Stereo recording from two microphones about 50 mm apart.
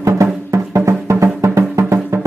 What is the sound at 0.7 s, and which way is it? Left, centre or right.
Music, right.